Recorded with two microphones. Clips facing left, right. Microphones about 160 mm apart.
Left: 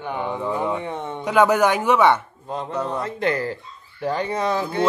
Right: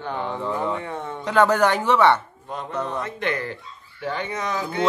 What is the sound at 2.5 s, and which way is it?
Speech, 30° left (ahead or behind).